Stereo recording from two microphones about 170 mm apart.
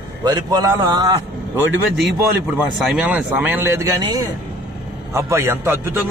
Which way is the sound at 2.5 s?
5° right (ahead or behind).